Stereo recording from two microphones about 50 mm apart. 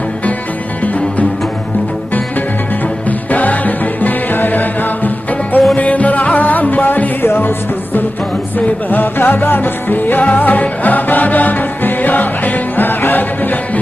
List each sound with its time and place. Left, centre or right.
3.1 s music: left